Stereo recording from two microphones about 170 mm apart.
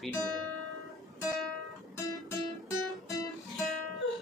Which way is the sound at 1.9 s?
20° left (ahead or behind).